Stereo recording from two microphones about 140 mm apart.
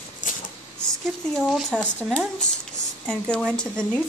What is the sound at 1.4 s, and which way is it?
Speech, 5° left (ahead or behind).